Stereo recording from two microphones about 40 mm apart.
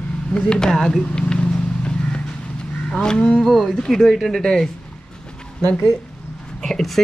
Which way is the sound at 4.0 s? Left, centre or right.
Centre.